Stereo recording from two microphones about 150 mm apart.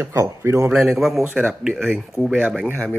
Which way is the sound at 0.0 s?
20° right (ahead or behind).